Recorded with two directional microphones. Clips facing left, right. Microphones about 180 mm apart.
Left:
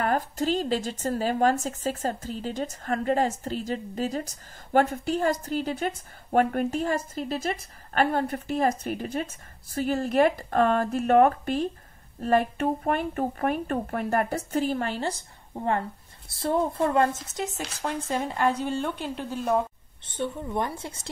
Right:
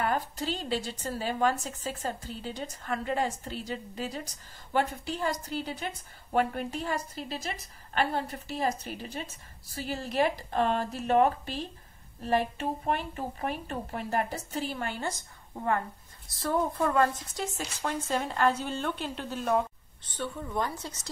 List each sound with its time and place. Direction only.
0.0 s a woman's voice: 40° left (ahead or behind); by 19.6 s 10° left (ahead or behind)
20.1 s speech: 25° left (ahead or behind)